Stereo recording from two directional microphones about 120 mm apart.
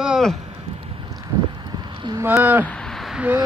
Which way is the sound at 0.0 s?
Centre (ahead or behind).